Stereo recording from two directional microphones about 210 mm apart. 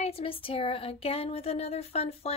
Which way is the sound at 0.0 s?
25° left (ahead or behind).